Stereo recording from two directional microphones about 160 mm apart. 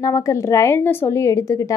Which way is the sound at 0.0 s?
20° left (ahead or behind).